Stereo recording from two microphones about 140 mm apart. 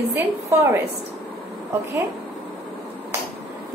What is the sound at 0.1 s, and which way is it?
Speech, 20° right (ahead or behind).